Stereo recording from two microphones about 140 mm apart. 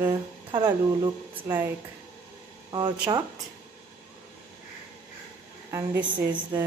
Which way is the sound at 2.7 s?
35° right (ahead or behind).